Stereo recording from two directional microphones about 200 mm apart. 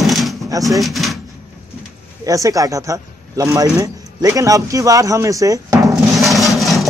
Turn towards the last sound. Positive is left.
turn(degrees=0)  # may be behind; listen again after turning